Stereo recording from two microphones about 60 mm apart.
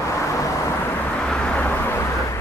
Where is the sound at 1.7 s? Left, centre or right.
Left.